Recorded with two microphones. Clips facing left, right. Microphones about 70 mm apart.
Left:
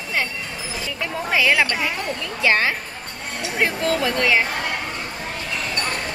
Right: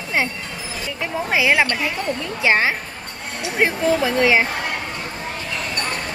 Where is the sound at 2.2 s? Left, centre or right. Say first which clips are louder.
Right 1 dB; centre.